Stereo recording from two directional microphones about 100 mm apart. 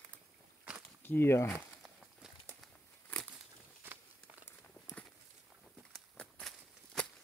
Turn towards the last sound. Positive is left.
turn(degrees=5)  # may be behind; listen again after turning